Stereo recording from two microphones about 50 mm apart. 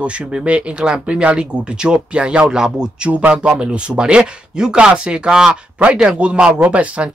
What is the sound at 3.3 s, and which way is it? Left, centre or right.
Chopping, centre.